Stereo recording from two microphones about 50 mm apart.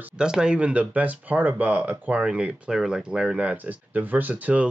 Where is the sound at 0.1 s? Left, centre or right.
Centre.